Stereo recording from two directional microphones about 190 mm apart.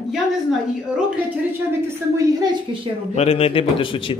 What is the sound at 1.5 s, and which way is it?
A woman's voice, 15° right (ahead or behind).